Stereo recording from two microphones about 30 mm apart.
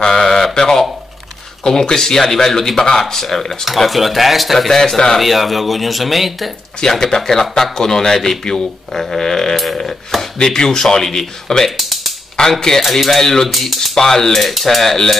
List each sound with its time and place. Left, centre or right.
0.1 s a sound: centre
0.6 s a man's voice: centre
3.6 s speech: centre
4.6 s a man's voice: centre
5.2 s speech: centre
6.9 s a man's voice: centre
11.7 s a sound: centre
12.4 s speech: centre
12.8 s a man's voice: centre
13.5 s speech: centre
13.9 s a man's voice: centre